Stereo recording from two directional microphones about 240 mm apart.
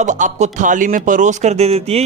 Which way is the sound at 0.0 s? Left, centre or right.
Right.